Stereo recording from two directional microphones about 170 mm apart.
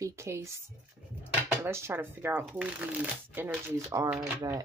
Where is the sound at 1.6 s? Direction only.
15° right (ahead or behind).